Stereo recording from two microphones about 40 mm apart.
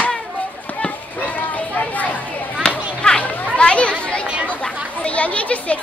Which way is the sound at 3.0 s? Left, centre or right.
Left.